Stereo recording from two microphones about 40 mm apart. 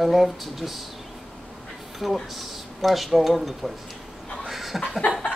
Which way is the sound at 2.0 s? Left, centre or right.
Centre.